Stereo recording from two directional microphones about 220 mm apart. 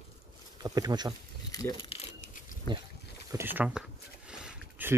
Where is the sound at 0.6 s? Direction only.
15° right (ahead or behind).